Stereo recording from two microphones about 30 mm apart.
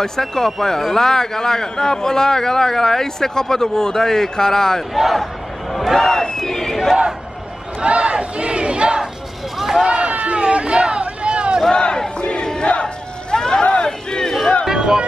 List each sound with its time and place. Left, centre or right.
0.0 s a man's voice: centre
4.9 s crowd: centre
5.9 s a man's voice: centre
6.3 s crowd: centre
7.8 s battle cry: right
9.6 s run: centre
9.8 s run: right
10.3 s a sound: right
11.7 s battle cry: left
12.8 s a sound: left
14.7 s music: centre